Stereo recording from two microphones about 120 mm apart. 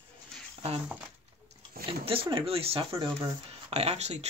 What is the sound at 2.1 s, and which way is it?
Speech, 50° right (ahead or behind).